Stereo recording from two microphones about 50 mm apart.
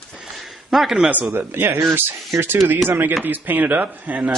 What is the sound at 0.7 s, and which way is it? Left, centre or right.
Speech, centre.